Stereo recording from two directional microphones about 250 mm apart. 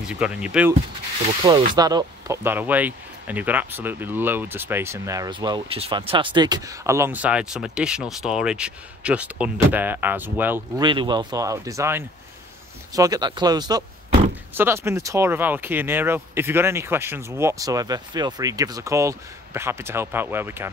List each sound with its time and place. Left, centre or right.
0.0 s speech: centre
1.5 s speech: centre
10.9 s speech: centre